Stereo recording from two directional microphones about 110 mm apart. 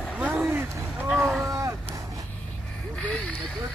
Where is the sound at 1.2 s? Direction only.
Centre (ahead or behind).